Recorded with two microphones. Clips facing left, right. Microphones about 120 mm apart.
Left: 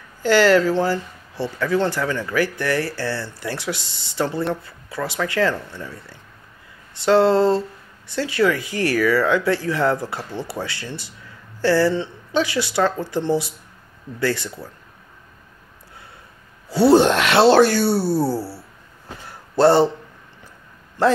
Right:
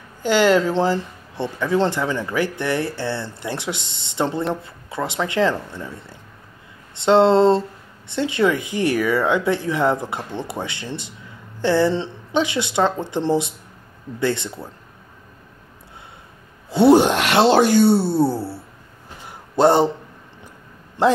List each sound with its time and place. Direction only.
0.2 s speech: 20° right (ahead or behind)
16.6 s speech: 20° right (ahead or behind)
19.2 s a sound: 15° right (ahead or behind)
21.0 s speech: 25° right (ahead or behind)